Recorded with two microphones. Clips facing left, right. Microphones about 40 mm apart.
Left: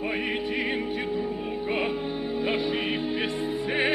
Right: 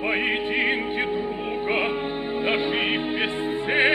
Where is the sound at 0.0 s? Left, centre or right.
Right.